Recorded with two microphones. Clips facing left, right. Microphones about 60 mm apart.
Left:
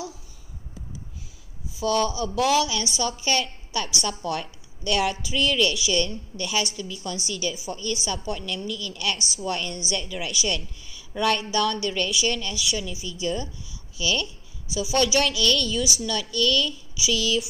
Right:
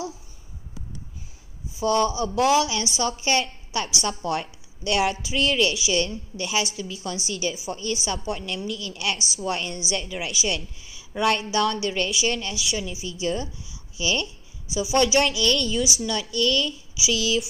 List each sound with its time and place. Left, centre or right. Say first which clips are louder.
1.8 s a woman's voice: right 2 dB; right